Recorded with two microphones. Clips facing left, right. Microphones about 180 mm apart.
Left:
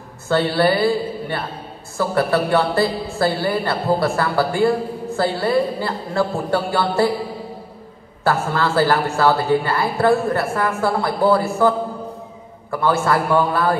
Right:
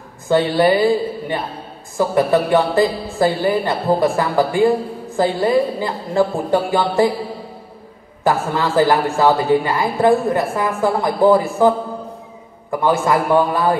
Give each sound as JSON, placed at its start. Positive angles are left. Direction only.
{"t": 0.3, "sound": "a woman's voice", "side_deg": -15}
{"t": 8.2, "sound": "a woman's voice", "side_deg": -15}
{"t": 12.8, "sound": "a woman's voice", "side_deg": -15}